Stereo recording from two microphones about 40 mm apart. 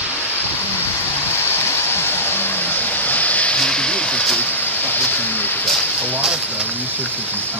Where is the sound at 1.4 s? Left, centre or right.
Left.